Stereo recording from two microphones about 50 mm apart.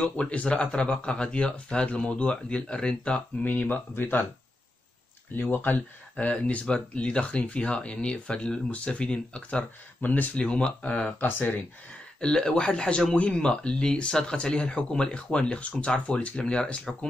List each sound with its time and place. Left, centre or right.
0.0 s speech: left
3.4 s speech: left
5.3 s speech: left
10.0 s speech: left
10.3 s speech: left
11.1 s speech: left
12.2 s speech: centre